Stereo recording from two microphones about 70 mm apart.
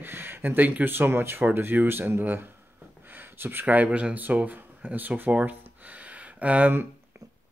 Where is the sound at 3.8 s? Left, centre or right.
Centre.